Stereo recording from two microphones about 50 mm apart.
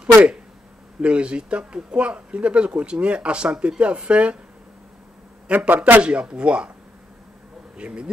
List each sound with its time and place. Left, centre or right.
0.0 s speech: centre
5.5 s speech: right
7.7 s speech: right